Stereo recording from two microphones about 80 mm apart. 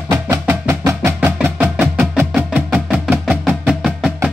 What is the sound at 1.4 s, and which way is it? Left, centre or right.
Music, right.